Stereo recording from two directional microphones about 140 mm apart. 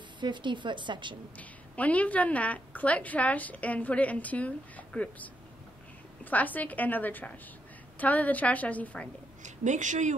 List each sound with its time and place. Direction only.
0.2 s a woman's voice: 35° right (ahead or behind)
1.4 s a woman's voice: 10° left (ahead or behind)
6.3 s a woman's voice: 10° left (ahead or behind)
9.4 s a woman's voice: 60° right (ahead or behind)